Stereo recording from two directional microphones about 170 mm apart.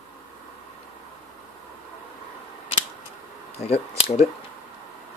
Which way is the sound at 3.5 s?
40° left (ahead or behind).